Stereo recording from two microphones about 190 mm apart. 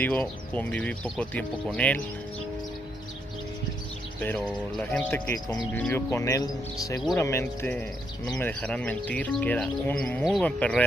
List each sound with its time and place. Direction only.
0.0 s speech: 5° left (ahead or behind)
4.2 s speech: 5° left (ahead or behind)
5.3 s speech: 20° left (ahead or behind)
5.7 s speech: 10° left (ahead or behind)